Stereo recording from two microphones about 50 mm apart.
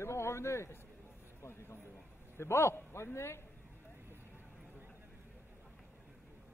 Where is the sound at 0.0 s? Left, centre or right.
Left.